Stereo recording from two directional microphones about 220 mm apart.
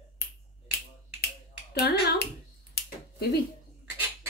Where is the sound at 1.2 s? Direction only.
45° left (ahead or behind).